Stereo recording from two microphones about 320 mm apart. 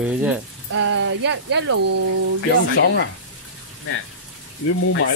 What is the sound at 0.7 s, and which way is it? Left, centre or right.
Speech, right.